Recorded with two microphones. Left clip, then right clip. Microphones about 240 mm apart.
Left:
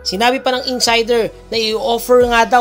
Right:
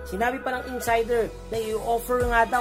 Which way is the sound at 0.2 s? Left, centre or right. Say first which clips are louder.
Left 11 dB; left.